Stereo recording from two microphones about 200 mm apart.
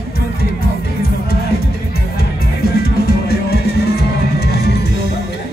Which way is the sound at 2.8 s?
50° left (ahead or behind).